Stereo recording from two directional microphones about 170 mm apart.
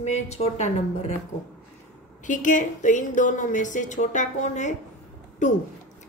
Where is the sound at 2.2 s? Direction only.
50° left (ahead or behind).